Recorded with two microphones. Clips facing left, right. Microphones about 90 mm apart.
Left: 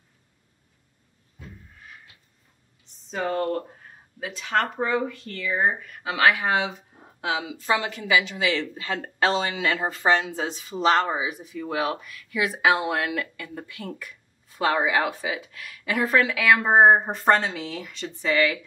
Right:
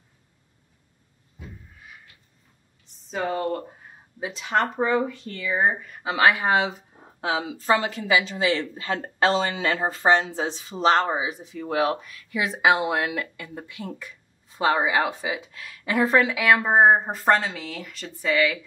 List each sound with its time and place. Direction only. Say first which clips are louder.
1.4 s a sound: right 1 dB; 5° right (ahead or behind)
3.1 s speech: even; 5° right (ahead or behind)
4.8 s speech: right 2 dB; 5° right (ahead or behind)
6.1 s speech: right 1 dB; 25° right (ahead or behind)
16.7 s speech: left 3 dB; centre (ahead or behind)